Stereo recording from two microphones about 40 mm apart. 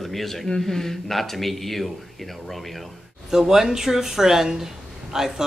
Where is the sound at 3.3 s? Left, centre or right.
Centre.